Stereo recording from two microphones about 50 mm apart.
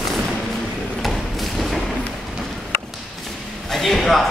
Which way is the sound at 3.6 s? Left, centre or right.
Centre.